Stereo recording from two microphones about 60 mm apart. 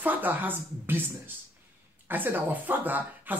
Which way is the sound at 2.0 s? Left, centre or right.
Right.